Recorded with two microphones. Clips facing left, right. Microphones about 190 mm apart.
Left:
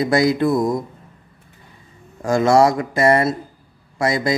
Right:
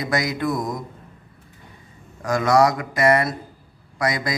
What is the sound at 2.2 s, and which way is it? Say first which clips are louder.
Speech: left 3 dB; 30° left (ahead or behind).